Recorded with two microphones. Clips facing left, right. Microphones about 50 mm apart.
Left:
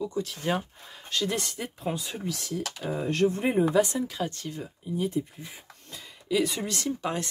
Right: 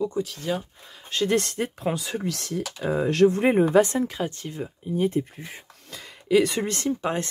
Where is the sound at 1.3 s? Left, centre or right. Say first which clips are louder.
Right 8 dB; right.